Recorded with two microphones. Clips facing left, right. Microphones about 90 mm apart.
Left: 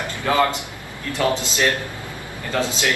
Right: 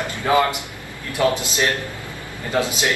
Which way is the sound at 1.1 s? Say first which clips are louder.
Right 2 dB; 15° right (ahead or behind).